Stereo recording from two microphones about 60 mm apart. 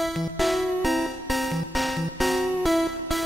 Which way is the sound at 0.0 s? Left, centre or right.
Centre.